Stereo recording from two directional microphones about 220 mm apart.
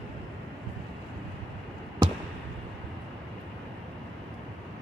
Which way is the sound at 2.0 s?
20° right (ahead or behind).